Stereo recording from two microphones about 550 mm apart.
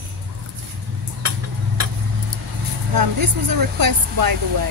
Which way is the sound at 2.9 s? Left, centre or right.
Right.